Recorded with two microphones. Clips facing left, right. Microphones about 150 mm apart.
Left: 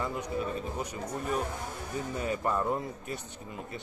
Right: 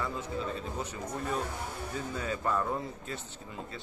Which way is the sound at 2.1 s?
20° left (ahead or behind).